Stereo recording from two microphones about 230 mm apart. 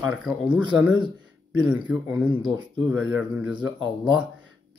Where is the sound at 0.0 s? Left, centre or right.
Centre.